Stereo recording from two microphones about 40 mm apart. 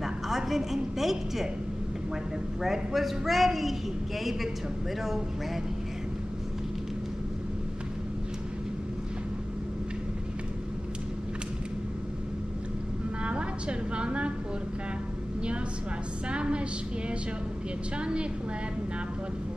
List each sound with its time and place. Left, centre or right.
0.0 s a woman's voice: centre
2.6 s a woman's voice: centre
13.2 s a sound: right
16.3 s a woman's voice: right
17.9 s a woman's voice: right